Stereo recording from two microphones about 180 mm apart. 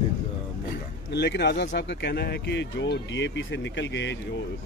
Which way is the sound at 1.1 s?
65° left (ahead or behind).